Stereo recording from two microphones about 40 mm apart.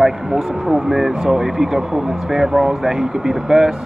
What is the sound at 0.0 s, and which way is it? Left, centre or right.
Speech, centre.